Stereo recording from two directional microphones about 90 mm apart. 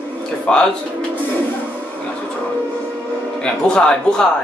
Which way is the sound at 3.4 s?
10° left (ahead or behind).